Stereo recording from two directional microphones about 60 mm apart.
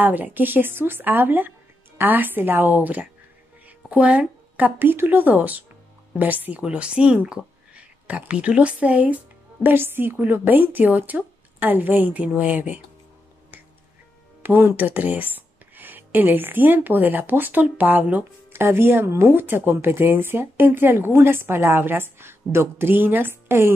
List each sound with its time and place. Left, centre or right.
0.0 s speech: right
14.4 s speech: right
18.5 s speech: right